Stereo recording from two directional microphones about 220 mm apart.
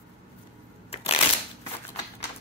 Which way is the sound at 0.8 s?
25° left (ahead or behind).